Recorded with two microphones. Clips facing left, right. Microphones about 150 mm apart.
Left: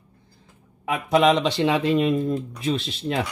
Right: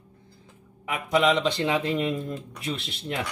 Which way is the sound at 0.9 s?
90° left.